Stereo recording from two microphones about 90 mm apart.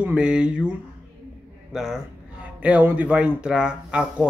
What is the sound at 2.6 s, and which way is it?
Speech, 20° right (ahead or behind).